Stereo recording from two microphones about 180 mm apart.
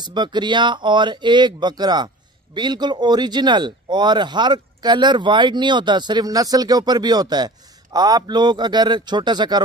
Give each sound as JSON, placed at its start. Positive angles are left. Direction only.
{"t": 0.0, "sound": "speech", "side_deg": -25}